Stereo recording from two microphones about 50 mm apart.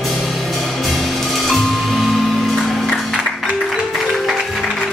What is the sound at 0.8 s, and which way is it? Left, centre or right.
Music, centre.